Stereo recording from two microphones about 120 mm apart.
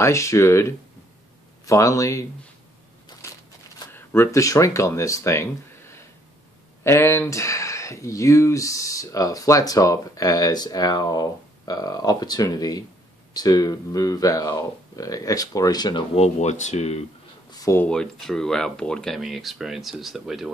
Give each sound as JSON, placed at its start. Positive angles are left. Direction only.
{"t": 0.0, "sound": "speech", "side_deg": 25}
{"t": 3.9, "sound": "speech", "side_deg": 20}
{"t": 16.2, "sound": "speech", "side_deg": 75}
{"t": 17.5, "sound": "a sound", "side_deg": 30}
{"t": 17.7, "sound": "speech", "side_deg": 5}